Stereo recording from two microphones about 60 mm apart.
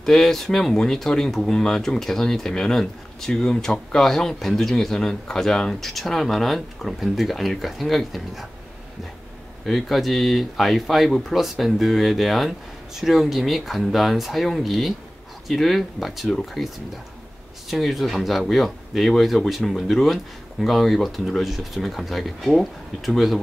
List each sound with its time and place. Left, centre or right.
0.0 s speech: centre
9.7 s speech: centre